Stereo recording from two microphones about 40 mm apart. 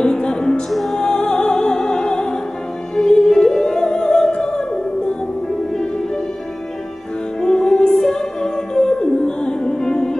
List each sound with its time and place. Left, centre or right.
0.0 s music: left
0.7 s music: centre
0.9 s music: centre
7.4 s music: centre